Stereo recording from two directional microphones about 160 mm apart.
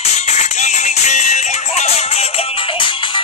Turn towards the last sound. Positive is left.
turn(degrees=35)  # may be behind; listen again after turning